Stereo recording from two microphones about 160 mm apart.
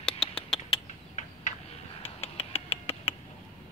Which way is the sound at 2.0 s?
40° left (ahead or behind).